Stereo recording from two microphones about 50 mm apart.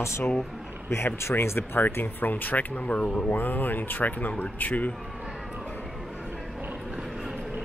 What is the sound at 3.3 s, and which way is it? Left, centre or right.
Speech, left.